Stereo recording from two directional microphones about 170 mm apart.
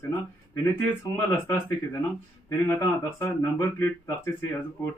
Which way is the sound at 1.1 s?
15° left (ahead or behind).